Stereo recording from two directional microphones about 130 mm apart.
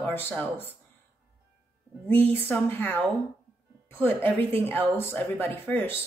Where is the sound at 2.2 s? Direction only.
15° left (ahead or behind).